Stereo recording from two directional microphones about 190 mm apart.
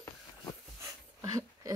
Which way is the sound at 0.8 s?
15° right (ahead or behind).